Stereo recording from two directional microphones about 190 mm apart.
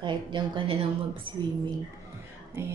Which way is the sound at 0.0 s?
25° right (ahead or behind).